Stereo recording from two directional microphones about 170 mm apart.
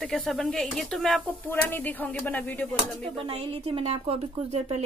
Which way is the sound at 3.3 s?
35° right (ahead or behind).